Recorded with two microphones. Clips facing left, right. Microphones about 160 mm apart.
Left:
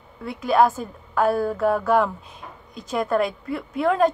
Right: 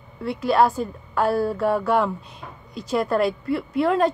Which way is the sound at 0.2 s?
Centre (ahead or behind).